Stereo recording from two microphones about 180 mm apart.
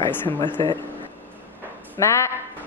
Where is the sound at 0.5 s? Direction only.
25° right (ahead or behind).